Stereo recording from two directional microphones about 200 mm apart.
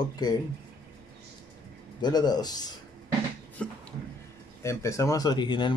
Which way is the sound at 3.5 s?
5° left (ahead or behind).